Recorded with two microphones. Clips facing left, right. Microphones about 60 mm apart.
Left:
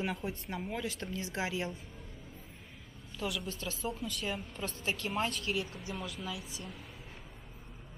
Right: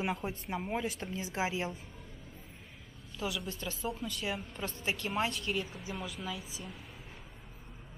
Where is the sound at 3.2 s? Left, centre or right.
Centre.